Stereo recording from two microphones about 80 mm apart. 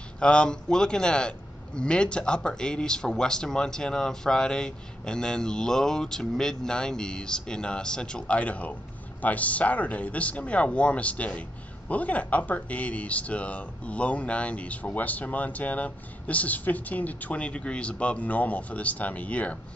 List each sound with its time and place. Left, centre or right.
0.2 s speech: centre